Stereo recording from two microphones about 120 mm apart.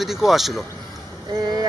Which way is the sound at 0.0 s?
Centre (ahead or behind).